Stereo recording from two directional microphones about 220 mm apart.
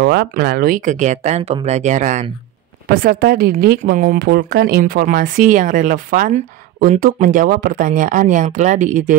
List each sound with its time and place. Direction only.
0.0 s speech: 45° right (ahead or behind)